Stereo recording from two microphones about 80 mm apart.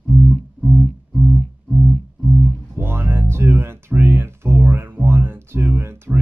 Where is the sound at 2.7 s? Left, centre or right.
Right.